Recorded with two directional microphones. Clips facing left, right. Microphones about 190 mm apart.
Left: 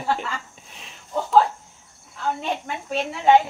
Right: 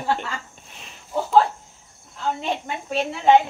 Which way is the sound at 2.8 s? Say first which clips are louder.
Right 1 dB; centre (ahead or behind).